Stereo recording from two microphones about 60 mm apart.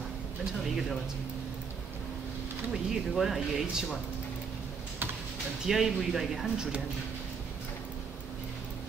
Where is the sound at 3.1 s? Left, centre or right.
Centre.